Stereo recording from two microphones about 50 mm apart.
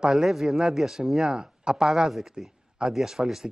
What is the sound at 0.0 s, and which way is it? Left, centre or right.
Speech, centre.